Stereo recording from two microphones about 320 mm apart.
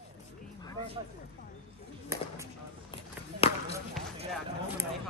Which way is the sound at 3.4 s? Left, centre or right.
Centre.